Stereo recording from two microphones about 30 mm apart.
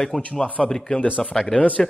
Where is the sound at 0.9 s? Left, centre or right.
Left.